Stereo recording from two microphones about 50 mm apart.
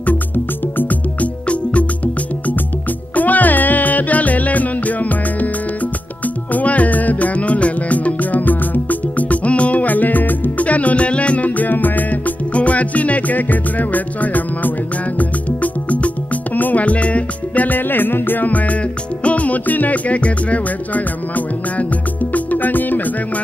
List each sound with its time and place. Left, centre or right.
0.7 s music: left
3.2 s music: left
17.6 s music: left